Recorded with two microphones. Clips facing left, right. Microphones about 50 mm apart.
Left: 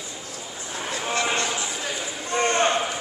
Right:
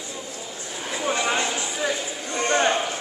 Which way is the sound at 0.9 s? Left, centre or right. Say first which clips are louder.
Right 2 dB; centre.